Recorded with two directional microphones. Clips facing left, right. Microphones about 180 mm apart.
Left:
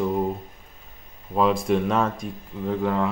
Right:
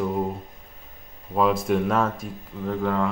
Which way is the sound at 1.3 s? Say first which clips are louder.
Left 1 dB; centre (ahead or behind).